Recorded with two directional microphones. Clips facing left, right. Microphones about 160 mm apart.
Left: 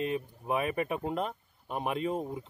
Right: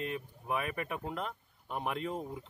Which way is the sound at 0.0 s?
20° left (ahead or behind).